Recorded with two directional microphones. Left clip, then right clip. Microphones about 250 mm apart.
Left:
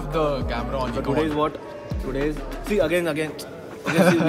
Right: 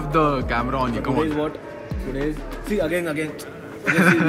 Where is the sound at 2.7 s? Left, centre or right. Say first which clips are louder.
Left 2 dB; left.